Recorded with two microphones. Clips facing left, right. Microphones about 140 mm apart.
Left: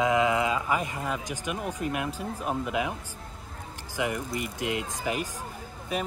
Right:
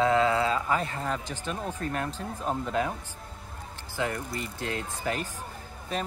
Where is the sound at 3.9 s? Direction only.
15° left (ahead or behind).